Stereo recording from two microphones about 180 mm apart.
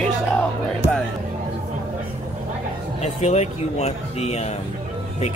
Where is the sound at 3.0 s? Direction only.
40° left (ahead or behind).